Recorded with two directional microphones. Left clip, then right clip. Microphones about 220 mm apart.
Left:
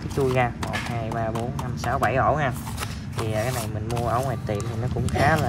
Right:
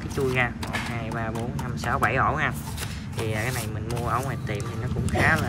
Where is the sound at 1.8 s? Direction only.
15° left (ahead or behind).